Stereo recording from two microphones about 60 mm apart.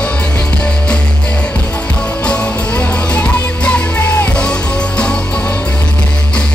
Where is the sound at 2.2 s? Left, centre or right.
Left.